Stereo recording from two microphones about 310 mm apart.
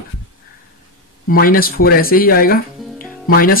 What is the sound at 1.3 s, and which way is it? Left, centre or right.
Speech, left.